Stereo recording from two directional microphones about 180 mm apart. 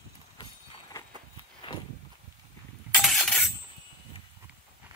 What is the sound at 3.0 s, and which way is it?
Chink, centre (ahead or behind).